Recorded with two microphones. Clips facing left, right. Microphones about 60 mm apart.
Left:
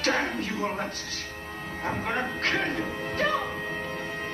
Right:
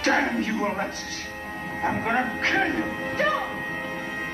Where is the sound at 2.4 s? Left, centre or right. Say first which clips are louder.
Right 4 dB; centre.